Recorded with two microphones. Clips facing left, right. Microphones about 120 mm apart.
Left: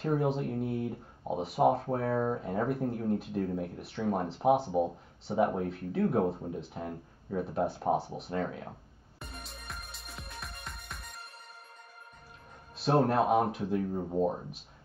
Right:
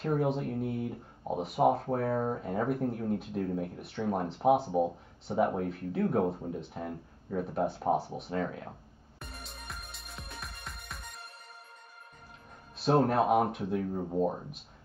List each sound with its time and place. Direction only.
0.0 s speech: centre (ahead or behind)
9.2 s music: centre (ahead or behind)
12.7 s a man's voice: centre (ahead or behind)